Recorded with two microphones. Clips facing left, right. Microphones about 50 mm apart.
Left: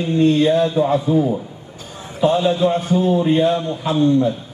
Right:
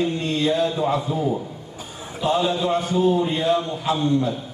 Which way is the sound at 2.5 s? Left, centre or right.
Left.